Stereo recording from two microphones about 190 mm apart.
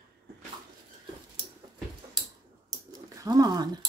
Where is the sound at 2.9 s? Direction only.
20° right (ahead or behind).